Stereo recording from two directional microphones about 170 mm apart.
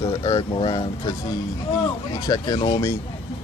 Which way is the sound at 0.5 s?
30° left (ahead or behind).